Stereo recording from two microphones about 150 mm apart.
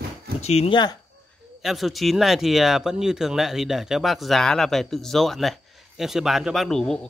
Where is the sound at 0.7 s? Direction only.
30° left (ahead or behind).